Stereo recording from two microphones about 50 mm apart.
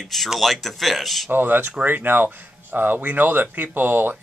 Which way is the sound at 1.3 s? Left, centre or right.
Right.